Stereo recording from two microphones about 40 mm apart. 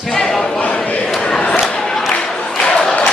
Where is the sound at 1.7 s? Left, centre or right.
Centre.